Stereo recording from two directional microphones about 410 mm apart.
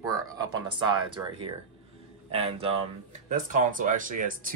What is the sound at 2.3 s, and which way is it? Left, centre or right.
A man's voice, centre.